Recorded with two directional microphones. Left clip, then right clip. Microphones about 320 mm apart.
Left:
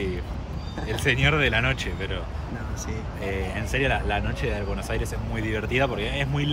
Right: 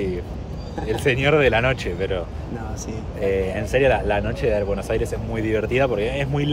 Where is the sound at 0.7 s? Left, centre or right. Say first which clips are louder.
Right 3 dB; centre.